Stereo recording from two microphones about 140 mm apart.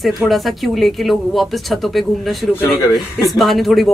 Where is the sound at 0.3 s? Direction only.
Centre (ahead or behind).